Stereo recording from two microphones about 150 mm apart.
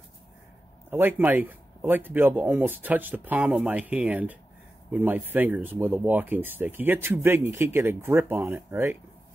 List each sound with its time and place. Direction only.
0.8 s speech: 15° right (ahead or behind)